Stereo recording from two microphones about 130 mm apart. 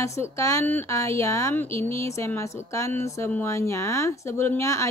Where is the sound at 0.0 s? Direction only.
25° left (ahead or behind).